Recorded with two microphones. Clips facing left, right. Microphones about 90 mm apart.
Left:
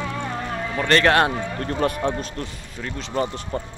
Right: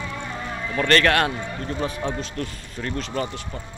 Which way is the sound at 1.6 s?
60° left (ahead or behind).